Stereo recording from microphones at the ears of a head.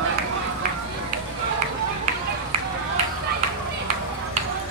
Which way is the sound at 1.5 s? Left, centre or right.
Right.